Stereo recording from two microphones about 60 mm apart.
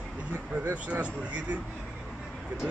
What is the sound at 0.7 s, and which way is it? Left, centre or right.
Speech, right.